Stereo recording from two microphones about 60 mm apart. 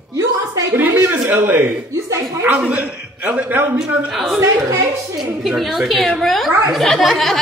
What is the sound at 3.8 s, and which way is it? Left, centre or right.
A woman's voice, centre.